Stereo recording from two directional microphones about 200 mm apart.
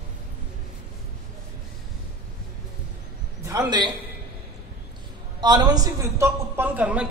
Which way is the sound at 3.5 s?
20° right (ahead or behind).